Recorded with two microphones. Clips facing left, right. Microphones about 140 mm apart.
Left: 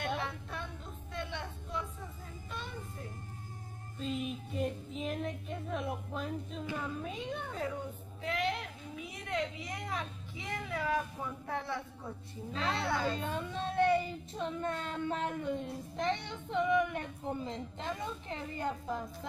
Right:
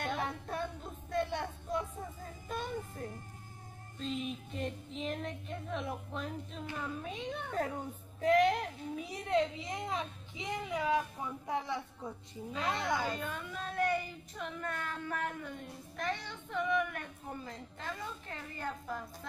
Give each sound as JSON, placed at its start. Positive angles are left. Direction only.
{"t": 0.2, "sound": "a sound", "side_deg": -40}
{"t": 4.0, "sound": "a woman's voice", "side_deg": 5}
{"t": 8.2, "sound": "a woman's voice", "side_deg": -45}
{"t": 13.1, "sound": "speech", "side_deg": 30}